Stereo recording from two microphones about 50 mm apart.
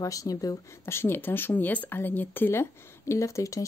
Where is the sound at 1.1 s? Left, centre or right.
Left.